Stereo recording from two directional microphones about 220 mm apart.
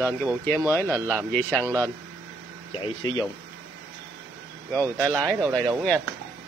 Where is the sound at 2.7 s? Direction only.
20° left (ahead or behind).